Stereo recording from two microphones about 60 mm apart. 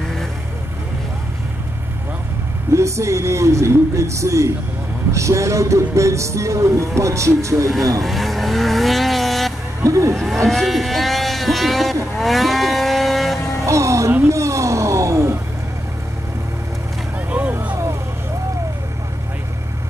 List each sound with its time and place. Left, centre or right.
2.7 s speech: right
8.0 s vehicle: centre
9.8 s speech: right
10.1 s vehicle: centre
12.2 s cattle: centre
13.7 s music: right
14.3 s a sound: right
17.3 s vehicle: right